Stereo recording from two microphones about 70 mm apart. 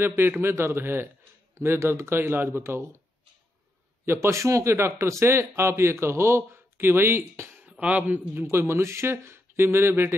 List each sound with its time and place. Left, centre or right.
0.0 s speech: right
4.0 s speech: right
7.6 s speech: centre
8.4 s speech: right